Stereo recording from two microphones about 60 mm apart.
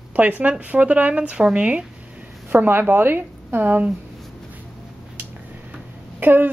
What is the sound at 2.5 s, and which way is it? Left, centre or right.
Speech, right.